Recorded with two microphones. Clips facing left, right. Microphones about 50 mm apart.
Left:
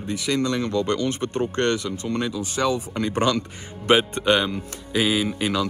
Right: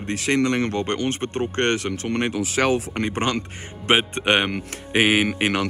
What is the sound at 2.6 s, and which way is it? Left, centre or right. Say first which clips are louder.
Speech: right 2 dB; right.